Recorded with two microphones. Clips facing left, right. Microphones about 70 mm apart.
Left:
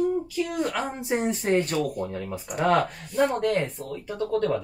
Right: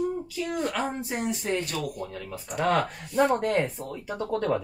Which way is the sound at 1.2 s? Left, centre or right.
Left.